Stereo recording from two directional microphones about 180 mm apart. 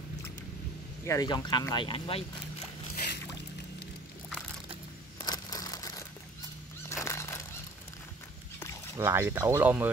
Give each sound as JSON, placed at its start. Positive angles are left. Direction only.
{"t": 1.0, "sound": "speech", "side_deg": 20}
{"t": 2.9, "sound": "boat", "side_deg": 55}
{"t": 5.2, "sound": "crumpling", "side_deg": 20}
{"t": 6.9, "sound": "music", "side_deg": 15}
{"t": 8.9, "sound": "speech", "side_deg": -15}